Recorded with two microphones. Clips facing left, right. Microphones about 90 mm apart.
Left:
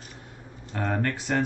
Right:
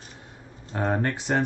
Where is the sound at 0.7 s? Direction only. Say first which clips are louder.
Right 2 dB; 25° right (ahead or behind).